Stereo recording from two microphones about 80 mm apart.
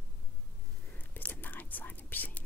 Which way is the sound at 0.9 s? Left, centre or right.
Left.